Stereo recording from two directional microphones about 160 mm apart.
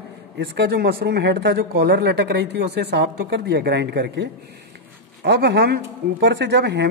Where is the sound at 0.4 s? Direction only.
90° right.